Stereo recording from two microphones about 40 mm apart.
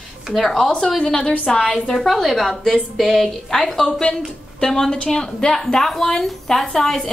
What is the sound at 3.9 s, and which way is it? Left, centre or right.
A woman's voice, left.